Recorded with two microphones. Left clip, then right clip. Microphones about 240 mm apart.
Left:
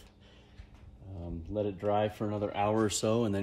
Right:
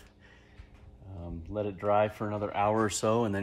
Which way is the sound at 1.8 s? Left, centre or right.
Centre.